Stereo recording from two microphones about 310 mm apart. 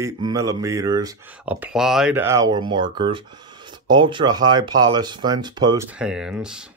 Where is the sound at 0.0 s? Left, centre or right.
Centre.